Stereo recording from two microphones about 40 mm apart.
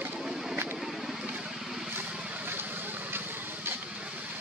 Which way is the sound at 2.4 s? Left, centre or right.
Right.